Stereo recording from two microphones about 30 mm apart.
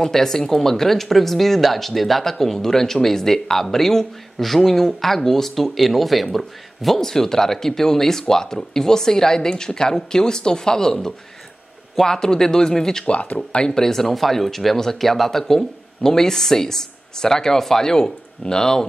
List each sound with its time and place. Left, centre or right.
0.0 s a woman's voice: centre
5.8 s speech: centre
7.0 s speech: centre
13.0 s speech: left
13.7 s a woman's voice: centre